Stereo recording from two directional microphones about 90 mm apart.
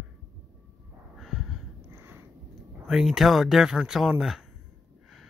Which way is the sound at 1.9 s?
25° right (ahead or behind).